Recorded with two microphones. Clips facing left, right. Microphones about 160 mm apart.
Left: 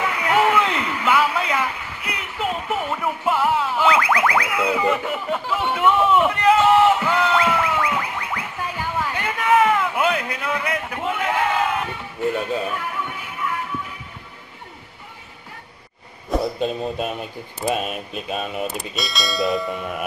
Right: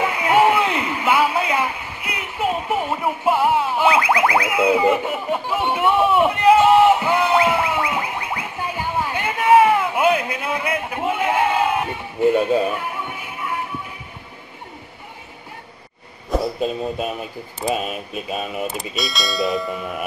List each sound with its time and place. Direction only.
0.0 s a sound: 15° right (ahead or behind)
2.3 s music: 15° right (ahead or behind)
4.6 s speech: 15° right (ahead or behind)
5.9 s a sound: 15° right (ahead or behind)
12.4 s speech: 20° right (ahead or behind)
16.3 s speech: centre (ahead or behind)